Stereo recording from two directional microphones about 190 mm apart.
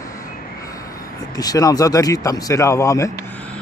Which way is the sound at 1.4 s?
20° left (ahead or behind).